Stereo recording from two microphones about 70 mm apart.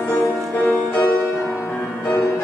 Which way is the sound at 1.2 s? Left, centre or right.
Left.